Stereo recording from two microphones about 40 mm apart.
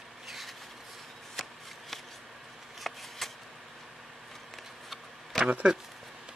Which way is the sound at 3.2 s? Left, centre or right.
Centre.